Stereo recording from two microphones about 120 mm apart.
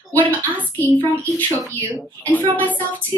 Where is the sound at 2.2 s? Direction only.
15° left (ahead or behind).